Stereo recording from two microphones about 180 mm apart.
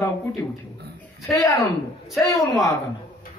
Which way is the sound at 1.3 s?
20° left (ahead or behind).